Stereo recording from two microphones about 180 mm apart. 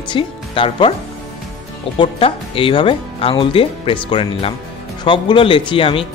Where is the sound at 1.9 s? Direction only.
30° left (ahead or behind).